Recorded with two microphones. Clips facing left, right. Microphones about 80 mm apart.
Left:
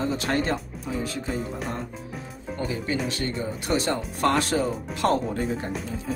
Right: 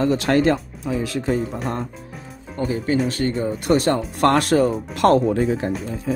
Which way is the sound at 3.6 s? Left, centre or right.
Right.